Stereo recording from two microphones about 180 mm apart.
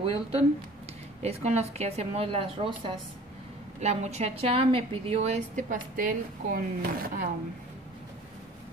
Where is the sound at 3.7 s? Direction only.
40° right (ahead or behind).